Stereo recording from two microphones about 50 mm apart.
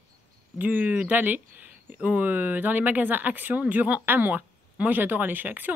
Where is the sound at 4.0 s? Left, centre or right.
Right.